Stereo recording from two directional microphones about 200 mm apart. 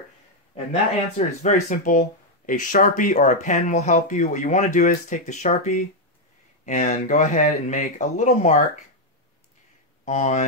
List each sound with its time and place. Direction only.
1.1 s speech: 35° left (ahead or behind)
10.0 s speech: 35° left (ahead or behind)